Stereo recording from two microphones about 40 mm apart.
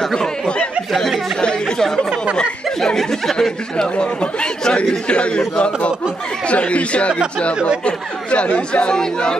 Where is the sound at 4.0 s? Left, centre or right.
Left.